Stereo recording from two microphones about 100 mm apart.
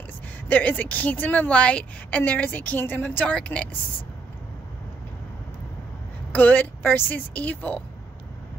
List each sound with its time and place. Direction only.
0.5 s a woman's voice: 15° left (ahead or behind)
6.3 s a woman's voice: 20° left (ahead or behind)